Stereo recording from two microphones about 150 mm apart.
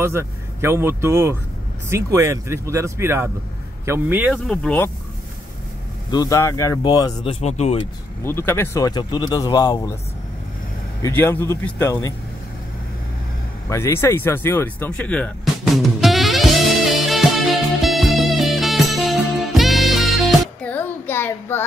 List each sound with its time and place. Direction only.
0.0 s speech: 15° right (ahead or behind)
4.3 s speech: 5° left (ahead or behind)
6.0 s speech: 25° left (ahead or behind)
7.4 s speech: 45° left (ahead or behind)
8.2 s speech: 15° left (ahead or behind)
11.0 s speech: 15° left (ahead or behind)
13.7 s music: 20° left (ahead or behind); by 20.7 s centre (ahead or behind)
20.7 s child singing: 15° left (ahead or behind)